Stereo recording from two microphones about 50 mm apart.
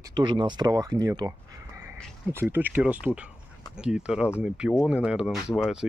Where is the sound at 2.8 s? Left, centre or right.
Right.